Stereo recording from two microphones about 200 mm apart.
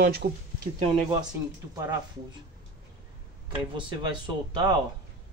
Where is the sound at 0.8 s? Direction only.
25° right (ahead or behind).